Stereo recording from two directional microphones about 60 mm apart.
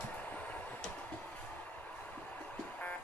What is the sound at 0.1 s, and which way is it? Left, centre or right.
Vehicle, left.